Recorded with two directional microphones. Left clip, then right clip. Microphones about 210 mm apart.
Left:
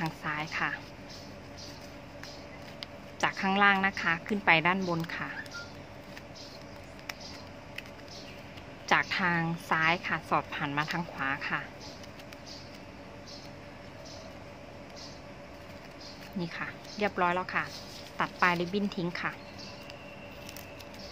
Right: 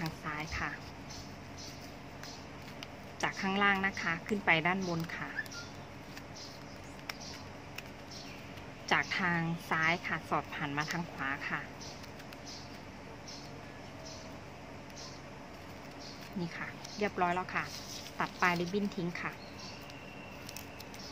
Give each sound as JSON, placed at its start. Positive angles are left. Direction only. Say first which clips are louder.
{"t": 0.0, "sound": "a sound", "louder": "left 5 dB", "side_deg": 20}
{"t": 3.2, "sound": "a woman's voice", "louder": "left 6 dB", "side_deg": 20}
{"t": 8.8, "sound": "a woman's voice", "louder": "left 4 dB", "side_deg": 15}
{"t": 16.3, "sound": "a woman's voice", "louder": "left 4 dB", "side_deg": 20}